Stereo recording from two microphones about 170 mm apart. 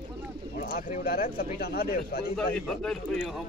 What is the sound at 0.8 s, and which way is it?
Speech, 55° left (ahead or behind).